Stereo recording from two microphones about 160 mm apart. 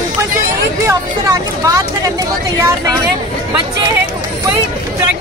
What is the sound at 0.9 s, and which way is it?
Speech, 20° right (ahead or behind).